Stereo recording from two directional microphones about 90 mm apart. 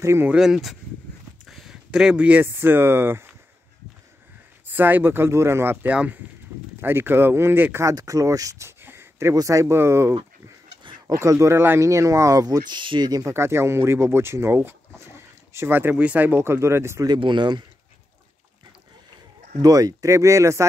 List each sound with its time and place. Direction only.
0.0 s speech: 30° right (ahead or behind)
0.3 s speech: 5° right (ahead or behind)
1.4 s a sound: centre (ahead or behind)
1.9 s speech: 10° right (ahead or behind); by 3.3 s 25° right (ahead or behind)
4.6 s speech: 20° right (ahead or behind)
7.8 s speech: 40° right (ahead or behind)
9.3 s speech: 40° right (ahead or behind)
10.8 s a sound: 65° right (ahead or behind)
11.1 s speech: 30° right (ahead or behind); by 13.2 s 55° right (ahead or behind)
13.2 s speech: 30° right (ahead or behind)
17.2 s speech: 60° right (ahead or behind)
19.6 s speech: 45° right (ahead or behind)